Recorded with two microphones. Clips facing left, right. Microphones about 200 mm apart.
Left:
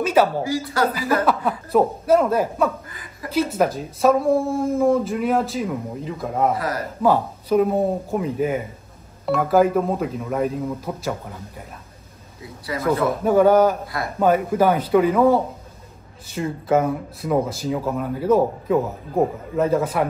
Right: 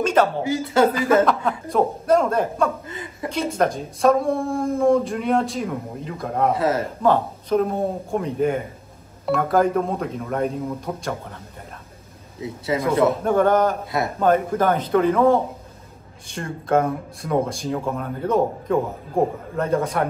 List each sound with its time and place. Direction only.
0.0 s speech: 10° left (ahead or behind)
0.4 s a woman's voice: 25° right (ahead or behind)
1.2 s speech: 5° left (ahead or behind)
2.9 s a woman's voice: 25° right (ahead or behind)
3.5 s speech: 5° left (ahead or behind)
6.5 s a woman's voice: 25° right (ahead or behind)
7.0 s speech: 10° left (ahead or behind)
12.4 s a woman's voice: 25° right (ahead or behind)
13.2 s a man's voice: 5° left (ahead or behind)